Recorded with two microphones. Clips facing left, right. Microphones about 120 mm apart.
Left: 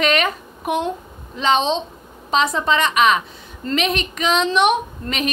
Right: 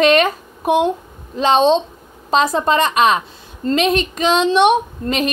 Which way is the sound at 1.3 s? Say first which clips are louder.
Right 5 dB; 40° right (ahead or behind).